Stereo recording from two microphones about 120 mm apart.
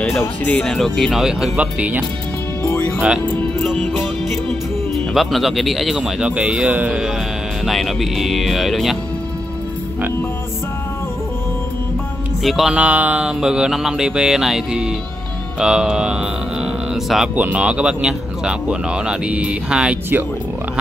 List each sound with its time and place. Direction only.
0.5 s speech: 5° left (ahead or behind); by 2.0 s 10° right (ahead or behind)
2.6 s music: 20° left (ahead or behind)
4.9 s speech: centre (ahead or behind)
7.6 s speech: centre (ahead or behind)
12.4 s speech: 5° right (ahead or behind)